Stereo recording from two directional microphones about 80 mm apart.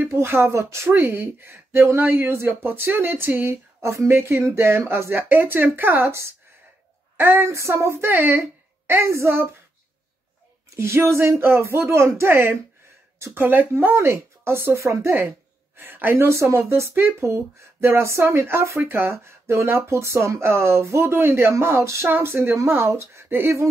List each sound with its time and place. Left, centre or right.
0.0 s speech: right
10.8 s speech: right